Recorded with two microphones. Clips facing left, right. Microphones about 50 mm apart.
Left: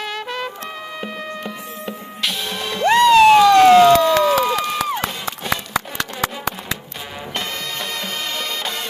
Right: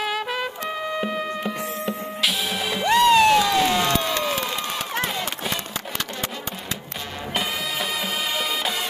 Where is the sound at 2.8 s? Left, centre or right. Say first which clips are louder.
Left 5 dB; left.